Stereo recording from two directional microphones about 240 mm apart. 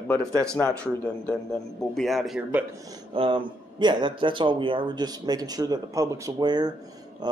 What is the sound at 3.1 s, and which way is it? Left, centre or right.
A man's voice, right.